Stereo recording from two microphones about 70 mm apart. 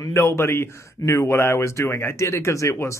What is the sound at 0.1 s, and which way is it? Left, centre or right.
Speech, left.